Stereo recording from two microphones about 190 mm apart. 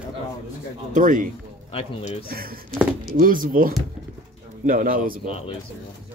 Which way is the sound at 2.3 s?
50° right (ahead or behind).